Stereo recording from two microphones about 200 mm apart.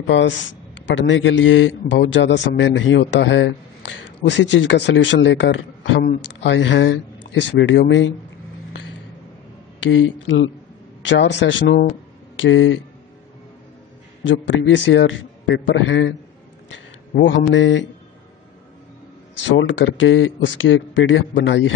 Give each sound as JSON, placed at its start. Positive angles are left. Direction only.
{"t": 0.0, "sound": "speech", "side_deg": 65}
{"t": 9.8, "sound": "a man's voice", "side_deg": 75}
{"t": 12.4, "sound": "a man's voice", "side_deg": 70}
{"t": 14.2, "sound": "speech", "side_deg": 65}
{"t": 16.7, "sound": "a sound", "side_deg": 65}
{"t": 17.4, "sound": "speech", "side_deg": 60}
{"t": 19.4, "sound": "a man's voice", "side_deg": 70}